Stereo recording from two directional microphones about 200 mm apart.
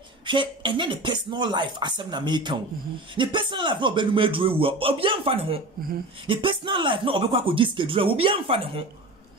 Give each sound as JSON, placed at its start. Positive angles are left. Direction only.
{"t": 0.3, "sound": "speech", "side_deg": -25}